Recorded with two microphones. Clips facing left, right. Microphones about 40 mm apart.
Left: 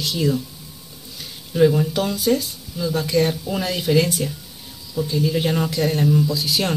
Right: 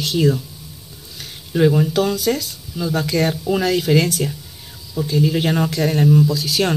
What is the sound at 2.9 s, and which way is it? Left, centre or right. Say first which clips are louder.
Speech: even; right.